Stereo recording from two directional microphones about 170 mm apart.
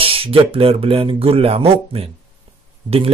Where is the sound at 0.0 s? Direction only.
35° right (ahead or behind).